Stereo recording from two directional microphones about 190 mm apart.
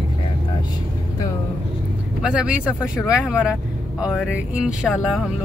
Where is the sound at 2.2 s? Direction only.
5° right (ahead or behind).